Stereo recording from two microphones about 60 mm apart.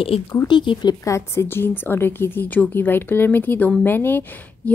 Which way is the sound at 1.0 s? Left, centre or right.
Left.